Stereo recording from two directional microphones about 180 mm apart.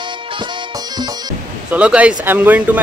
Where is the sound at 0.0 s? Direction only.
25° right (ahead or behind).